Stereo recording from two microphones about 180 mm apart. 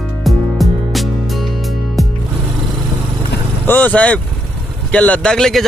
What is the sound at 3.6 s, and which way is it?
Speech, 10° left (ahead or behind).